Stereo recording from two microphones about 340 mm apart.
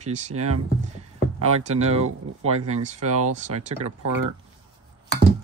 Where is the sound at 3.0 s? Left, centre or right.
Right.